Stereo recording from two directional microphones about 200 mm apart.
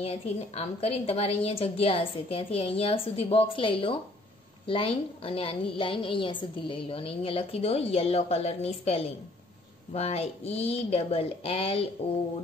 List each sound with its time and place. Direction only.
0.0 s a woman's voice: 30° left (ahead or behind)